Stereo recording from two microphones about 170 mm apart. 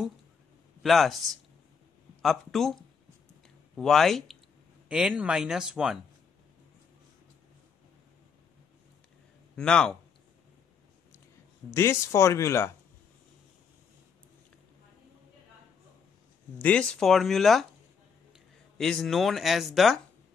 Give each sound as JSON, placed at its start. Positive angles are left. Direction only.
{"t": 0.8, "sound": "speech", "side_deg": 0}
{"t": 9.6, "sound": "speech", "side_deg": 5}
{"t": 11.7, "sound": "speech", "side_deg": 15}
{"t": 16.5, "sound": "speech", "side_deg": 5}